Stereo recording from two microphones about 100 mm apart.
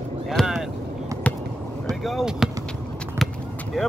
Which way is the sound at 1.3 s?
15° left (ahead or behind).